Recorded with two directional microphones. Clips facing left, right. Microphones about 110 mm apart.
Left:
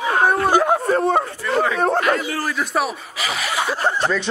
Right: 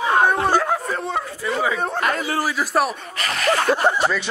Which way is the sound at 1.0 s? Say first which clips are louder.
Left 6 dB; 55° left (ahead or behind).